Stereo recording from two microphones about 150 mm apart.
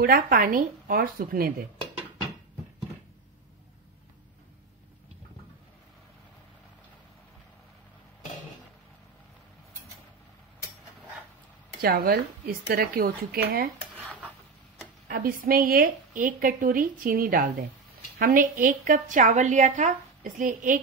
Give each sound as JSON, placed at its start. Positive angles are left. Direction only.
{"t": 0.0, "sound": "a woman's voice", "side_deg": -70}
{"t": 11.8, "sound": "a woman's voice", "side_deg": -80}
{"t": 15.0, "sound": "a woman's voice", "side_deg": -75}